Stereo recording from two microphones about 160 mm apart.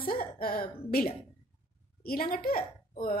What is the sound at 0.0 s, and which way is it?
A woman's voice, 70° left (ahead or behind).